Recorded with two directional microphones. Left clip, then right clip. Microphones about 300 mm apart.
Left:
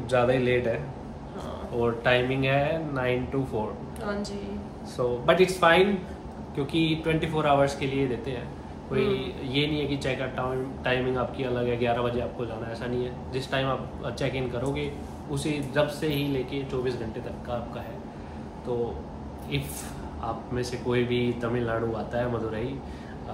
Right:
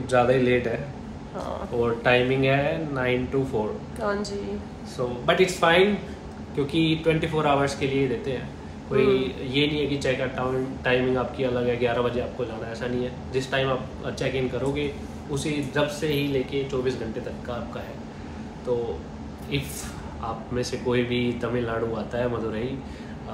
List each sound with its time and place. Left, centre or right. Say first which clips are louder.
0.1 s a man's voice: right 3 dB; centre
1.8 s a man's voice: right 2 dB; centre
4.0 s a woman's voice: right 6 dB; centre
4.9 s a man's voice: even; centre
18.7 s a man's voice: right 3 dB; centre
20.5 s a man's voice: right 3 dB; centre